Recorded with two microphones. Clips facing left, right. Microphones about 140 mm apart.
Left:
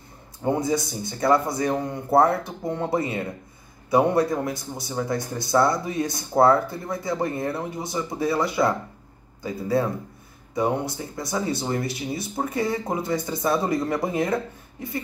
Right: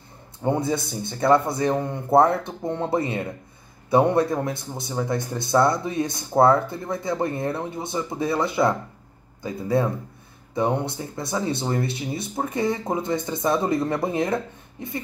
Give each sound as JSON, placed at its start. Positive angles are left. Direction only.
{"t": 0.6, "sound": "speech", "side_deg": -25}